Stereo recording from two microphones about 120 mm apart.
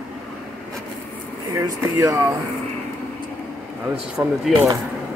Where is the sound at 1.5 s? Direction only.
30° right (ahead or behind).